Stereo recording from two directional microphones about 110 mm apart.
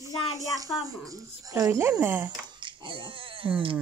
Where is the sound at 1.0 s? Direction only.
30° right (ahead or behind).